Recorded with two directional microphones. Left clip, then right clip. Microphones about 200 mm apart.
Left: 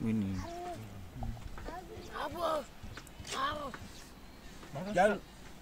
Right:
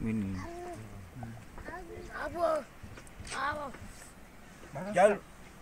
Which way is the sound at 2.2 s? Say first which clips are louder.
Right 3 dB; 55° left (ahead or behind).